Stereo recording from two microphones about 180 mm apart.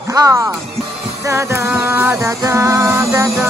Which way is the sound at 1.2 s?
15° right (ahead or behind).